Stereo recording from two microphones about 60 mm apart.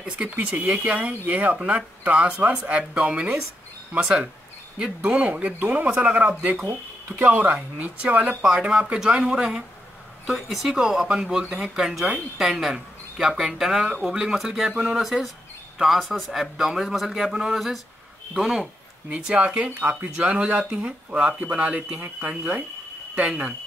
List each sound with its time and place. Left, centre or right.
0.0 s speech: right
6.6 s speech: right
7.8 s a man's voice: right